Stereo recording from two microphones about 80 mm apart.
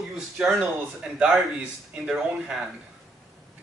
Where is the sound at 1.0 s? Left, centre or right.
Centre.